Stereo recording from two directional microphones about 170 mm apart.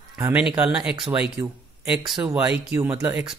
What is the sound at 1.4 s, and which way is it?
Speech, 20° right (ahead or behind).